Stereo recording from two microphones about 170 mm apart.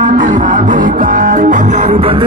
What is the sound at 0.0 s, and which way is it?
Music, 50° right (ahead or behind).